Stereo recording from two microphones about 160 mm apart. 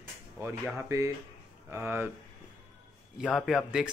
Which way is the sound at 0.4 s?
15° right (ahead or behind).